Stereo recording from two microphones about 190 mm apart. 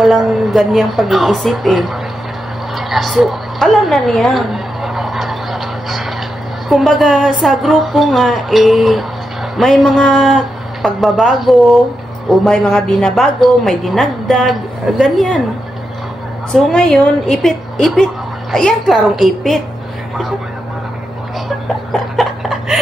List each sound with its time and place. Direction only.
0.0 s a woman's voice: centre (ahead or behind)
2.7 s a sound: centre (ahead or behind)
6.7 s a woman's voice: centre (ahead or behind)
16.5 s a woman's voice: 5° left (ahead or behind)
21.9 s chuckle: centre (ahead or behind)